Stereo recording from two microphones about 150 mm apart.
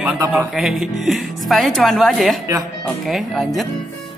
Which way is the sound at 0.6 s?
Centre (ahead or behind).